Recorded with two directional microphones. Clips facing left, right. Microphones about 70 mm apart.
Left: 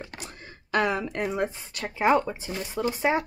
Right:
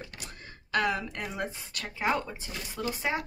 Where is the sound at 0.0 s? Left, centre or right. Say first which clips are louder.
Left 4 dB; left.